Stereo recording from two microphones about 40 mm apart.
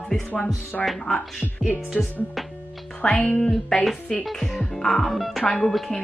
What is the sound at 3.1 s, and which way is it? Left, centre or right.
Music, left.